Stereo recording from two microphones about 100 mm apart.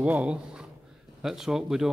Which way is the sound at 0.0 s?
15° right (ahead or behind).